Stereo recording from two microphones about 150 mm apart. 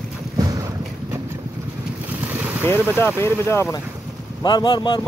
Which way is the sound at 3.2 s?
15° left (ahead or behind).